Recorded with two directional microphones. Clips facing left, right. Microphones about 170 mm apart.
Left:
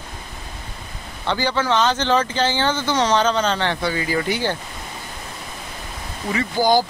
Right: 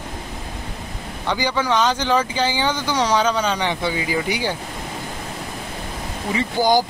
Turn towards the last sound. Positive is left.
turn(degrees=-15)  # may be behind; listen again after turning